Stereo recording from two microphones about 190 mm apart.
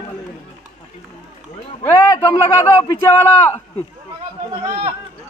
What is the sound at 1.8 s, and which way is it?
Speech, 10° left (ahead or behind).